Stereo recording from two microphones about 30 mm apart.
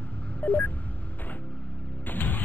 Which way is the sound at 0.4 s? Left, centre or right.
Left.